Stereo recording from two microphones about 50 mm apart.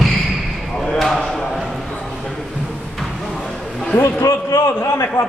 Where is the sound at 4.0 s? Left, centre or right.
Left.